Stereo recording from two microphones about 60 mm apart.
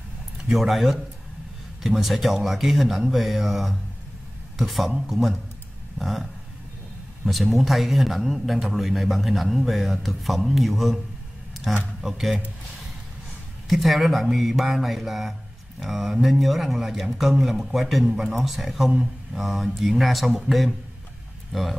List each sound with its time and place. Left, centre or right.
0.5 s speech: centre
7.2 s speech: centre
12.0 s speech: centre
13.7 s speech: centre